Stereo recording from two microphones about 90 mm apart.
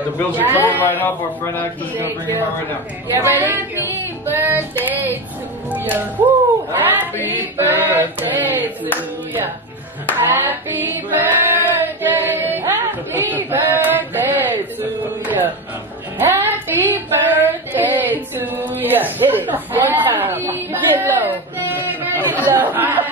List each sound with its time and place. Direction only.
0.3 s speech: 20° right (ahead or behind)
0.8 s speech: 20° left (ahead or behind)
2.0 s speech: 25° right (ahead or behind)
3.9 s music: 25° right (ahead or behind)
4.8 s speech: 20° right (ahead or behind)
10.1 s female singing: 20° right (ahead or behind)
16.2 s child singing: 25° right (ahead or behind)
21.8 s a sound: 20° right (ahead or behind)
22.4 s chatter: 20° right (ahead or behind)